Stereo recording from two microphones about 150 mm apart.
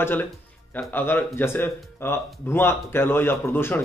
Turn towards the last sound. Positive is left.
turn(degrees=15)  # may be behind; listen again after turning